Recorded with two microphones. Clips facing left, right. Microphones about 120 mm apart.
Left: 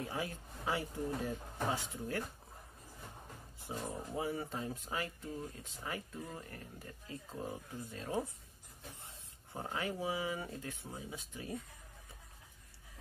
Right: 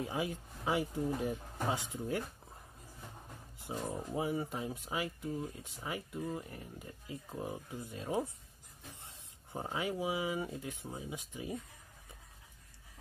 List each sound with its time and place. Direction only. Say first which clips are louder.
0.0 s speech: right 3 dB; 15° right (ahead or behind)
3.6 s speech: right 3 dB; 15° right (ahead or behind)